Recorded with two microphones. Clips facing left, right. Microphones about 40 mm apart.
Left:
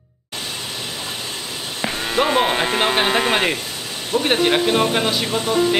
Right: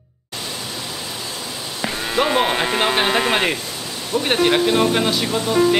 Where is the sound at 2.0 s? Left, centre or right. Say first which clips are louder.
Even; centre.